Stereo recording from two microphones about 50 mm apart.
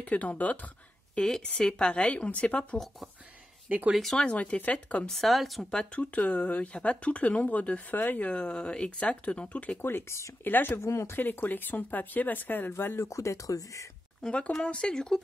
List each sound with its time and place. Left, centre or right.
0.0 s speech: left
1.1 s speech: centre
4.0 s speech: centre
4.3 s speech: left
5.1 s speech: centre
5.7 s speech: left
7.9 s speech: left
8.3 s speech: left
9.8 s speech: left
10.8 s speech: left
11.1 s speech: left
12.7 s speech: left
13.1 s speech: left
14.6 s speech: centre